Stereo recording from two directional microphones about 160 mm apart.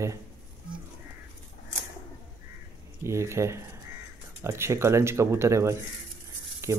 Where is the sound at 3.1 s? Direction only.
15° right (ahead or behind).